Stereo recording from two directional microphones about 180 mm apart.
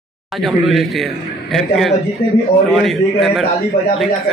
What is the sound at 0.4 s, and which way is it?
A man's voice, centre (ahead or behind).